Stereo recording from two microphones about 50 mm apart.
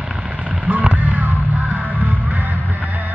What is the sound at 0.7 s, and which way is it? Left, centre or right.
Music, right.